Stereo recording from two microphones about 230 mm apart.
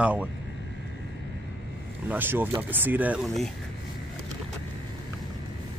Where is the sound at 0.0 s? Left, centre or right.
Centre.